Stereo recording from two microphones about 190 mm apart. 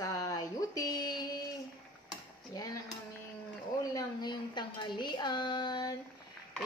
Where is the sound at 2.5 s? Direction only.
20° left (ahead or behind).